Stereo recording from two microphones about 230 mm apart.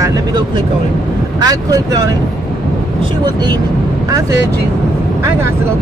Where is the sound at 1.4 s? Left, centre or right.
Centre.